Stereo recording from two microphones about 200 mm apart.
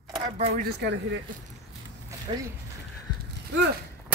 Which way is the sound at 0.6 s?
55° right (ahead or behind).